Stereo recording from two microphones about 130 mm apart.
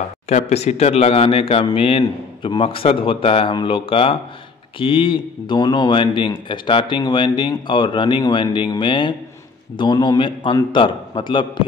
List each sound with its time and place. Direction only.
0.3 s a man's voice: 55° left (ahead or behind); by 11.6 s 35° left (ahead or behind)